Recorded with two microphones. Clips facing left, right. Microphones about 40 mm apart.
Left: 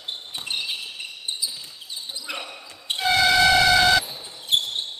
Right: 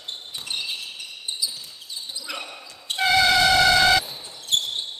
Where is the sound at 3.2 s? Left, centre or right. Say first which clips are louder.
Left 1 dB; centre.